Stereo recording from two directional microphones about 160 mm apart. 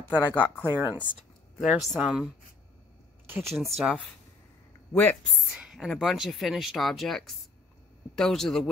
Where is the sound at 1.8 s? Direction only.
5° right (ahead or behind).